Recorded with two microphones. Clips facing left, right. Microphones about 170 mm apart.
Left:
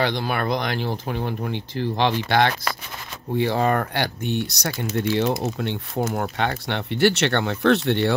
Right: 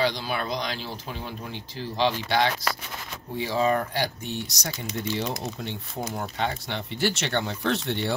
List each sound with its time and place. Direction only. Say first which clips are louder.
0.0 s speech: left 3 dB; 60° left (ahead or behind)